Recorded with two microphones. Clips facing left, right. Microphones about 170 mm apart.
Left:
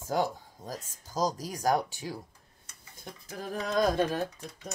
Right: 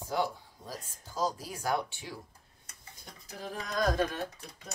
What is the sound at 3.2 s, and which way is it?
Music, 45° left (ahead or behind).